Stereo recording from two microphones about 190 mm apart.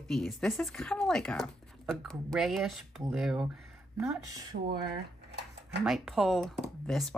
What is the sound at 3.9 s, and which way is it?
Speech, 15° right (ahead or behind).